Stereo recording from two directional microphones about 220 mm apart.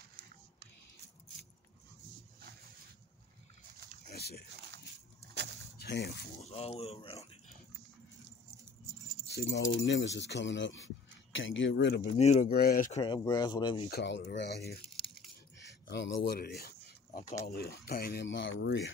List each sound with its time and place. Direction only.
4.1 s a sound: 45° left (ahead or behind)
5.8 s speech: 50° left (ahead or behind)
6.4 s speech: 25° left (ahead or behind)
9.3 s speech: 50° left (ahead or behind)
12.2 s speech: 30° left (ahead or behind)
12.4 s speech: 45° left (ahead or behind)
13.0 s speech: 20° left (ahead or behind)
13.8 s speech: 50° left (ahead or behind)
15.6 s a sound: 50° left (ahead or behind)
16.3 s speech: 45° left (ahead or behind)